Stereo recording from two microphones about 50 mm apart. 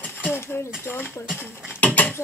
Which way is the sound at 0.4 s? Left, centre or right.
Left.